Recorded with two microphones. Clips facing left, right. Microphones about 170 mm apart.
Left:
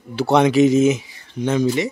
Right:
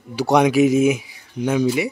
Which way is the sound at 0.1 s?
15° right (ahead or behind).